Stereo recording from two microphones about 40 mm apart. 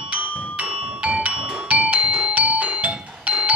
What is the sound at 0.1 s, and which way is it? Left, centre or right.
Music, right.